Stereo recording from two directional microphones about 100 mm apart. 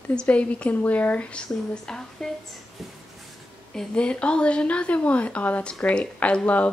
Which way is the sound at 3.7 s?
10° left (ahead or behind).